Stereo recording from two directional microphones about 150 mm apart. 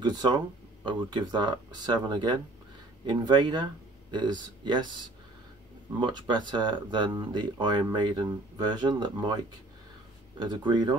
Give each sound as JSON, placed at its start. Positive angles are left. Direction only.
{"t": 0.0, "sound": "speech", "side_deg": -30}
{"t": 5.9, "sound": "speech", "side_deg": -30}
{"t": 10.4, "sound": "speech", "side_deg": -30}